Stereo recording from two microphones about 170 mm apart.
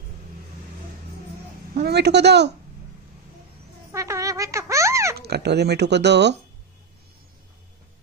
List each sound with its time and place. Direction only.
1.8 s speech: 75° right (ahead or behind)
3.9 s a sound: 20° right (ahead or behind)
5.1 s speech: 70° right (ahead or behind); by 6.3 s 90° right